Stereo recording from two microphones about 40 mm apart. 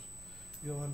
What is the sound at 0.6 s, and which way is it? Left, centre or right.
Speech, left.